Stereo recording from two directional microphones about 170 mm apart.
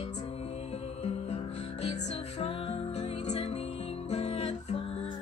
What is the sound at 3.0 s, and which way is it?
Music, 40° left (ahead or behind).